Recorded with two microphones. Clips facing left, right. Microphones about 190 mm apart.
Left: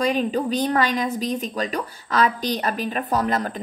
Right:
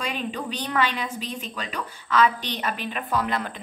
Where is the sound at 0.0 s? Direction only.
40° left (ahead or behind).